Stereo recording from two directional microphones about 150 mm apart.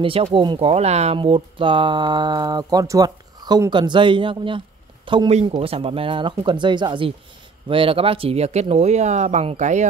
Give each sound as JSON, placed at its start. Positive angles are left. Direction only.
{"t": 0.0, "sound": "speech", "side_deg": -35}